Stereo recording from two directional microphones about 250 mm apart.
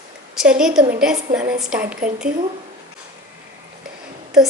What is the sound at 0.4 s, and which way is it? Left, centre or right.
Speech, centre.